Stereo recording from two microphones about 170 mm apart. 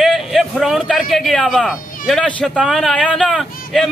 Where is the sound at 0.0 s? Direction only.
Centre (ahead or behind).